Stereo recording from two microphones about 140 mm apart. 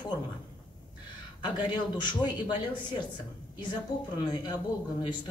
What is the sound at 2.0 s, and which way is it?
Speech, 35° left (ahead or behind).